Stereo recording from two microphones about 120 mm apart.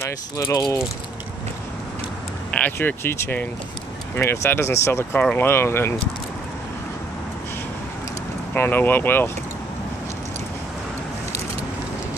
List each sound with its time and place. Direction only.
0.0 s speech: 25° left (ahead or behind)
2.5 s speech: 15° left (ahead or behind)
8.5 s speech: 15° left (ahead or behind)